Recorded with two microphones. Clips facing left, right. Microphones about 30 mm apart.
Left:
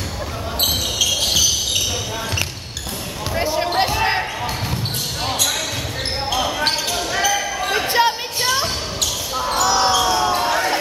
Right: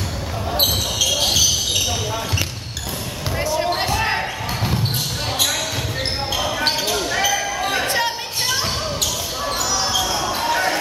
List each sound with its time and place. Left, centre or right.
0.7 s basketball bounce: centre
3.3 s basketball bounce: left
6.3 s basketball bounce: centre
9.6 s basketball bounce: centre
10.3 s basketball bounce: centre